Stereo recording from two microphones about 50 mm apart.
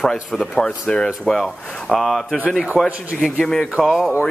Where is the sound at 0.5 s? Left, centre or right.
Centre.